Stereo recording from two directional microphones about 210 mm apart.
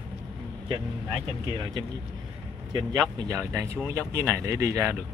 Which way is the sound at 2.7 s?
20° right (ahead or behind).